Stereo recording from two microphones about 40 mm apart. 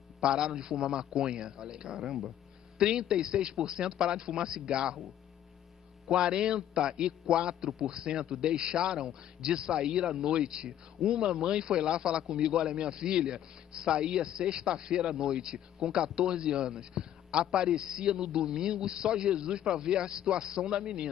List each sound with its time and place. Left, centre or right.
0.2 s a man's voice: right
6.0 s a man's voice: centre